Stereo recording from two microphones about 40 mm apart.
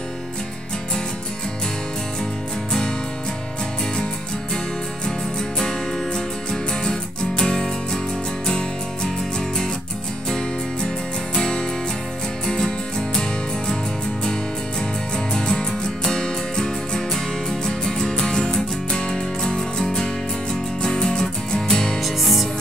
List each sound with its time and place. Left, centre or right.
5.6 s music: centre
11.3 s music: centre
15.1 s music: centre
22.0 s music: centre